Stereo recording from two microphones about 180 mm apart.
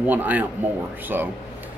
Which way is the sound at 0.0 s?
10° right (ahead or behind).